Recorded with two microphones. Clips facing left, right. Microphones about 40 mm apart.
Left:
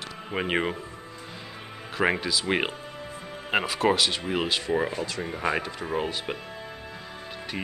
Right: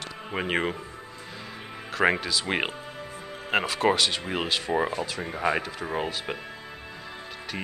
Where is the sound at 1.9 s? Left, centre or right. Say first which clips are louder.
Right 1 dB; centre.